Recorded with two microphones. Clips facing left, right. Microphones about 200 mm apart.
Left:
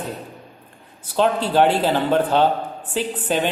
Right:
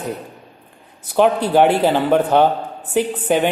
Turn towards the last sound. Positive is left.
turn(degrees=-15)  # may be behind; listen again after turning